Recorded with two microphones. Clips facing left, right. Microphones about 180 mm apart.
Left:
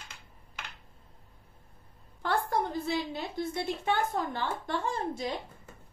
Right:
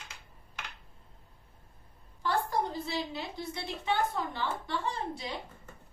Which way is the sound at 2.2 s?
50° left (ahead or behind).